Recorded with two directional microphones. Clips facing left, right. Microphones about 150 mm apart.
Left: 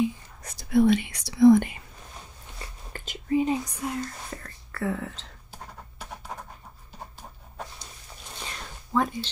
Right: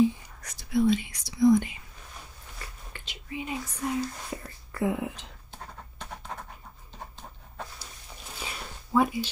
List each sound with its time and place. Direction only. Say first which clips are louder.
0.4 s whispering: left 3 dB; 30° left (ahead or behind)
0.7 s speech: left 4 dB; 60° left (ahead or behind)
2.9 s whispering: left 15 dB; 45° left (ahead or behind)
3.8 s speech: right 2 dB; centre (ahead or behind)
4.3 s speech: right 2 dB; 15° right (ahead or behind)
5.5 s a sound: left 1 dB; 5° left (ahead or behind)
8.4 s a sound: right 1 dB; 10° right (ahead or behind)